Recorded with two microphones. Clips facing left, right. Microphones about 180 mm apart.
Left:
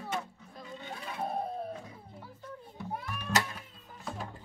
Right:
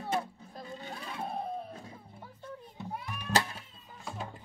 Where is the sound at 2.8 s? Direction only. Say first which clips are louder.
Left 2 dB; 15° right (ahead or behind).